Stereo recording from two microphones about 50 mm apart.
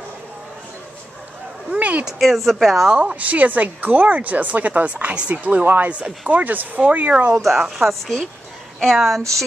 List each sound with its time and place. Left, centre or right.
1.7 s speech: right
2.0 s speech: centre
2.9 s speech: centre
3.2 s speech: right
7.4 s a woman's voice: centre